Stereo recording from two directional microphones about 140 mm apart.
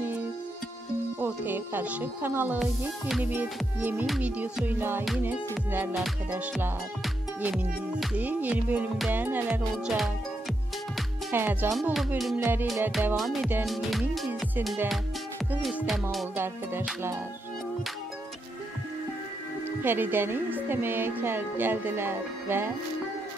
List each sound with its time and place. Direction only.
1.2 s speech: 15° right (ahead or behind)
2.6 s speech: centre (ahead or behind)
7.5 s speech: centre (ahead or behind)
8.2 s speech: 10° right (ahead or behind)
11.3 s speech: 15° right (ahead or behind)
13.1 s speech: centre (ahead or behind)
13.7 s music: centre (ahead or behind)
15.9 s speech: centre (ahead or behind)
19.8 s speech: 15° right (ahead or behind)